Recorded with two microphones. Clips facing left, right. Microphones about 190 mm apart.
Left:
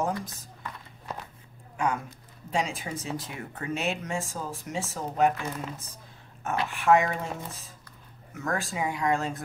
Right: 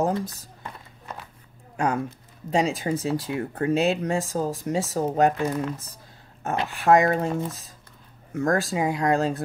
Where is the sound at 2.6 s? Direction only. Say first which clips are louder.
Right 7 dB; 40° right (ahead or behind).